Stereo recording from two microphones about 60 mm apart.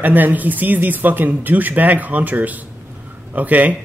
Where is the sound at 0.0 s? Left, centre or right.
Right.